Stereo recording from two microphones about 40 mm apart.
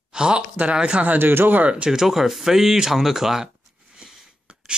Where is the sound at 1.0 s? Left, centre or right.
Right.